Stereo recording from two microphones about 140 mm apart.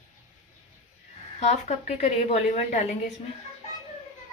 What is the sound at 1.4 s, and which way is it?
A woman's voice, 50° left (ahead or behind).